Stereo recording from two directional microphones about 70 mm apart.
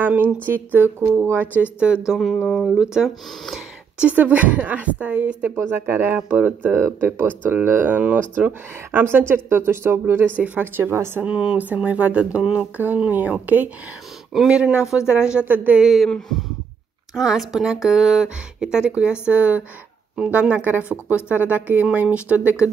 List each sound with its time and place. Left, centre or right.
0.0 s speech: right
2.4 s a woman's voice: centre
2.8 s speech: centre
4.0 s speech: right
5.6 s speech: right
8.9 s speech: right
10.8 s speech: right
11.2 s speech: centre
14.3 s speech: centre
15.4 s speech: right
15.8 s a woman's voice: centre; by 22.6 s right